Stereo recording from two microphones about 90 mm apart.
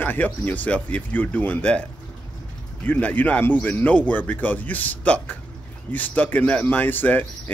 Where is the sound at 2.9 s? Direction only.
20° left (ahead or behind).